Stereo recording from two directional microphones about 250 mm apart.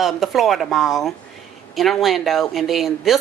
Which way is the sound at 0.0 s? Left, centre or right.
Centre.